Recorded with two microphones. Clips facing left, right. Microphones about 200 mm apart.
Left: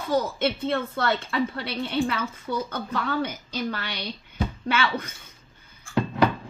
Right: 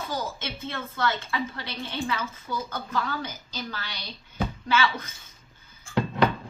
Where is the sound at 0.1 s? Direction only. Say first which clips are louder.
Left 13 dB; 60° left (ahead or behind).